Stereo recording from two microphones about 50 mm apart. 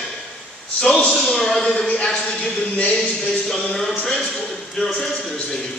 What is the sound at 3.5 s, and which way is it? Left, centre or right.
Speech, centre.